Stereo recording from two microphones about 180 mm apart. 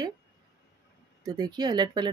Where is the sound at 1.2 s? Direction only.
20° right (ahead or behind).